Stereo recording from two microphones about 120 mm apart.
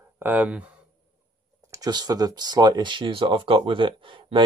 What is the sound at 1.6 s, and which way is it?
Speech, 30° right (ahead or behind).